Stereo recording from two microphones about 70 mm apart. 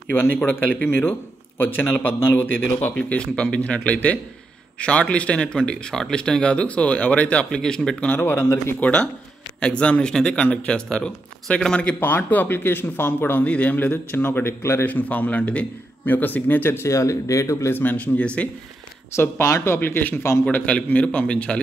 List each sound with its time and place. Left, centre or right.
0.1 s speech: left
2.3 s speech: left
3.0 s speech: centre
8.2 s speech: left
8.7 s speech: centre
12.0 s speech: left
14.9 s speech: left
16.8 s speech: left
17.7 s speech: left
19.1 s speech: left
20.4 s speech: centre